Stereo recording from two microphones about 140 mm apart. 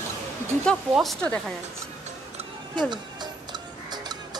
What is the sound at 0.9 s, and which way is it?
Speech, centre (ahead or behind).